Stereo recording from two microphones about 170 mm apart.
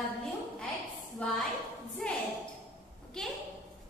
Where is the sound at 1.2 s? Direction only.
5° left (ahead or behind).